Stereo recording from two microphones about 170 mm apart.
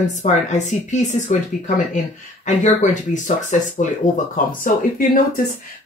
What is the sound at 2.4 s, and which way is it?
Speech, 45° left (ahead or behind).